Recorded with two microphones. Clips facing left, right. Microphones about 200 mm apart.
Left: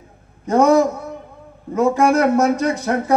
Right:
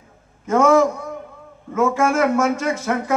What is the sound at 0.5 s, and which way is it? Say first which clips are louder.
Speech: left 1 dB; 35° left (ahead or behind).